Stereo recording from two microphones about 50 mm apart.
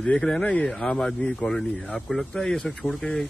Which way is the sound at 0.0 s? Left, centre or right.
Centre.